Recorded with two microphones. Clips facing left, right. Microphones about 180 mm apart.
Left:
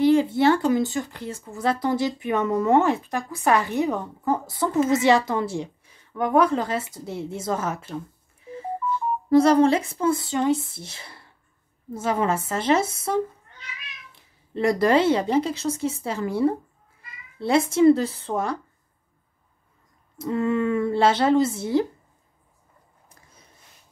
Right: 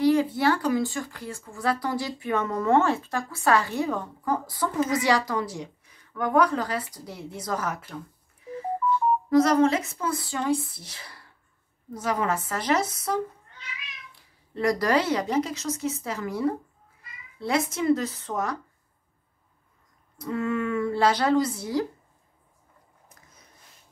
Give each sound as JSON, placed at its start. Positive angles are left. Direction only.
{"t": 0.0, "sound": "speech", "side_deg": 25}
{"t": 9.3, "sound": "speech", "side_deg": 30}
{"t": 20.2, "sound": "speech", "side_deg": 25}
{"t": 23.0, "sound": "a sound", "side_deg": 30}